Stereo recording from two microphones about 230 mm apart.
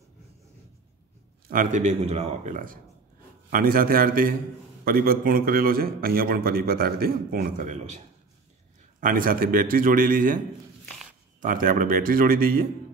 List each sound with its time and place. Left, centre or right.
1.5 s a man's voice: right
9.0 s a man's voice: right
11.4 s a man's voice: right